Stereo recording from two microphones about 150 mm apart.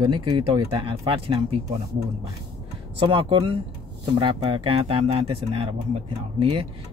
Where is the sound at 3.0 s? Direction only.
35° right (ahead or behind).